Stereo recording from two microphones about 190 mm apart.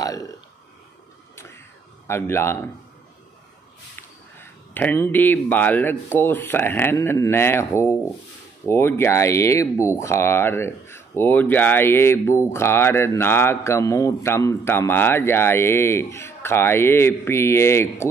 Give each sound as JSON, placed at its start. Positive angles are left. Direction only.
{"t": 0.0, "sound": "a sound", "side_deg": 20}
{"t": 2.0, "sound": "speech", "side_deg": 15}
{"t": 4.4, "sound": "speech", "side_deg": 10}